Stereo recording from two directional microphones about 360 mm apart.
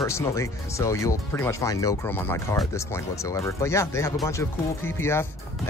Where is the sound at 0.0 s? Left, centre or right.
Centre.